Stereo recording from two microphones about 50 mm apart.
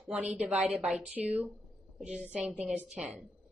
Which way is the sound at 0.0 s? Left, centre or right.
Right.